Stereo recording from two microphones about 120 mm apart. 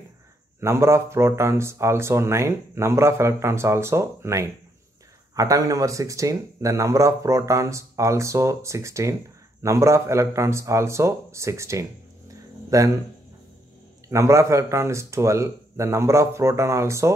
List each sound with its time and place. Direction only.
0.6 s speech: 20° right (ahead or behind)
14.0 s speech: 25° right (ahead or behind)